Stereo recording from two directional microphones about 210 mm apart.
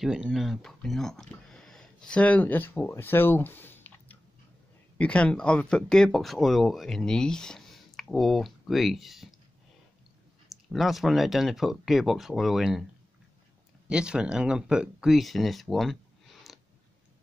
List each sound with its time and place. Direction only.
0.0 s speech: 5° right (ahead or behind)
10.7 s speech: centre (ahead or behind)
13.8 s speech: 5° right (ahead or behind)